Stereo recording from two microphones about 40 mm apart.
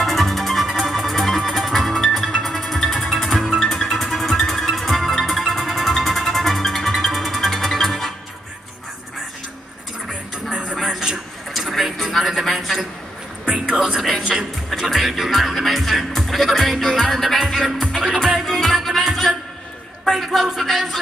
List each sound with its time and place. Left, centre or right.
0.0 s music: centre
10.3 s music: right
10.8 s a sound: centre
13.7 s music: centre